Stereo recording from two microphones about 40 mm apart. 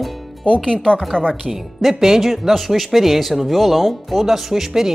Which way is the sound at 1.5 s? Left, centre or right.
Centre.